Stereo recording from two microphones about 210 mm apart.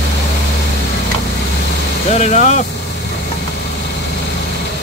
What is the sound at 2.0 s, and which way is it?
Speech, 35° left (ahead or behind).